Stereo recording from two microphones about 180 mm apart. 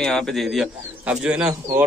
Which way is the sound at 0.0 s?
5° left (ahead or behind).